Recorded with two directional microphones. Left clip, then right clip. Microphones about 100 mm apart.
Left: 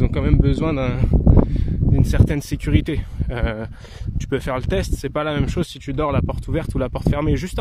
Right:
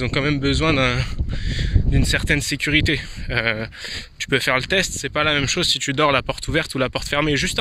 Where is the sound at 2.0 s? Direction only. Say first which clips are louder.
Right 4 dB; 35° left (ahead or behind).